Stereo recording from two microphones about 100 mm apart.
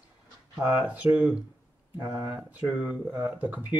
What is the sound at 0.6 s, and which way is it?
Speech, 15° right (ahead or behind).